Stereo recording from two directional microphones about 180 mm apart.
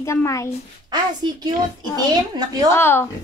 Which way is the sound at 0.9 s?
20° right (ahead or behind).